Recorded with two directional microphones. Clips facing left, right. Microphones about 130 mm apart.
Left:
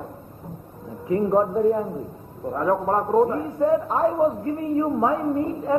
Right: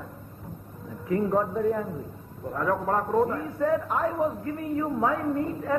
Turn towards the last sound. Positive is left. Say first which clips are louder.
# left 4 dB
turn(degrees=25)  # may be behind; listen again after turning